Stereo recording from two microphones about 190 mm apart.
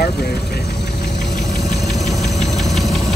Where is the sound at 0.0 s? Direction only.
55° left (ahead or behind).